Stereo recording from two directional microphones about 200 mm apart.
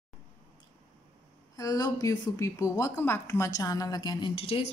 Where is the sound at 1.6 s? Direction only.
20° left (ahead or behind).